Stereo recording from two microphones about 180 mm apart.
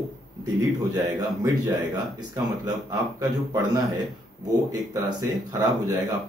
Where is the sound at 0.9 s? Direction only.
20° right (ahead or behind).